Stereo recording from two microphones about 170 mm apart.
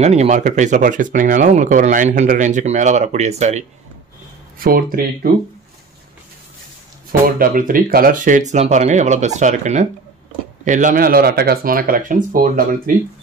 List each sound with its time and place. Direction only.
0.0 s speech: 40° right (ahead or behind)
4.6 s speech: 60° right (ahead or behind)
7.1 s speech: 60° right (ahead or behind)